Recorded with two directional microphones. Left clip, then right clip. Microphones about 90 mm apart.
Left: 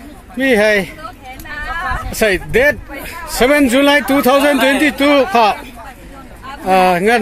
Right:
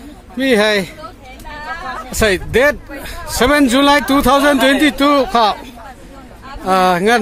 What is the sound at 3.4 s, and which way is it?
A man's voice, 20° right (ahead or behind).